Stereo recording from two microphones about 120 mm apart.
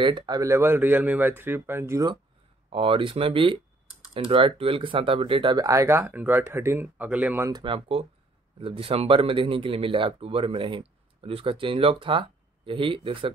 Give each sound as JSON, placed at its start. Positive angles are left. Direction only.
{"t": 0.0, "sound": "speech", "side_deg": -40}
{"t": 0.4, "sound": "speech", "side_deg": -20}
{"t": 2.7, "sound": "speech", "side_deg": -50}
{"t": 5.7, "sound": "speech", "side_deg": -25}
{"t": 7.6, "sound": "speech", "side_deg": -50}